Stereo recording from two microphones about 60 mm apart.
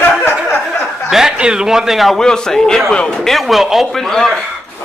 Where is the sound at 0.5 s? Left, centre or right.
Left.